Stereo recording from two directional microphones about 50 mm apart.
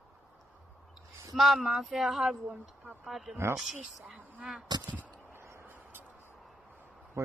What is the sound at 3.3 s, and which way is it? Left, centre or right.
Speech, right.